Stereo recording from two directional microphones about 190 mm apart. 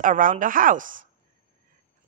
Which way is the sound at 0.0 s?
45° right (ahead or behind).